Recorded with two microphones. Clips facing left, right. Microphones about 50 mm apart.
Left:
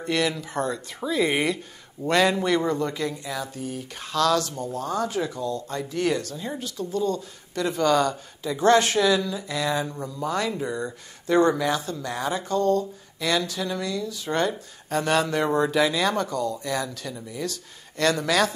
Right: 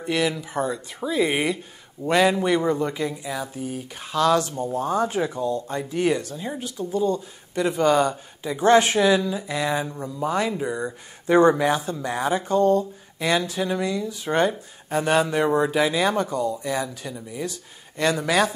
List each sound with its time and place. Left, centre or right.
0.0 s speech: centre